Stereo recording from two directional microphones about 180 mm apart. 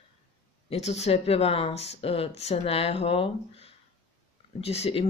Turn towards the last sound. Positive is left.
turn(degrees=35)  # may be behind; listen again after turning